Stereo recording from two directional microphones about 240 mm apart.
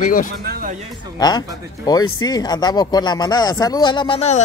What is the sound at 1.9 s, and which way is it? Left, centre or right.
A man's voice, centre.